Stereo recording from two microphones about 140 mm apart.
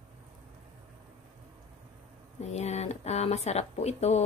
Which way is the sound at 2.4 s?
50° left (ahead or behind).